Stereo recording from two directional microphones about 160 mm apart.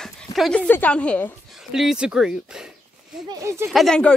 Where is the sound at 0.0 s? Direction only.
Centre (ahead or behind).